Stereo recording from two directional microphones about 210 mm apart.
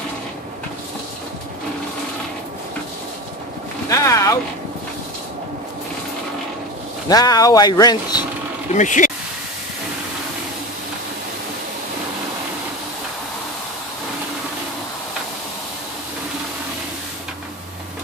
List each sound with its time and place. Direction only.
3.9 s a sound: 15° left (ahead or behind)
7.1 s speech: 20° left (ahead or behind)
8.7 s speech: 35° left (ahead or behind)